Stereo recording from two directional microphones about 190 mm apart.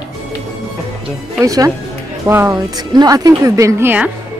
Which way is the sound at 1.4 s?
15° right (ahead or behind).